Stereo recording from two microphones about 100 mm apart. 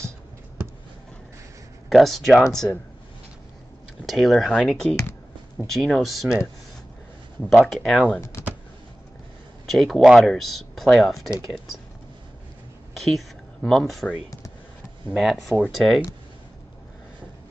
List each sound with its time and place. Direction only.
1.9 s speech: centre (ahead or behind)
4.0 s speech: centre (ahead or behind)
7.4 s speech: centre (ahead or behind)
8.2 s speech: 30° left (ahead or behind)
9.7 s speech: centre (ahead or behind)
12.9 s a sound: centre (ahead or behind)
15.1 s speech: centre (ahead or behind)